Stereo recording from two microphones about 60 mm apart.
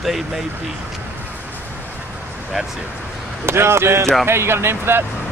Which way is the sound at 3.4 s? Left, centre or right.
Right.